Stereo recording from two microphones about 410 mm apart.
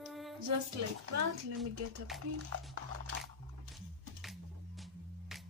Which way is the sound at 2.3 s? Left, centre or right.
Right.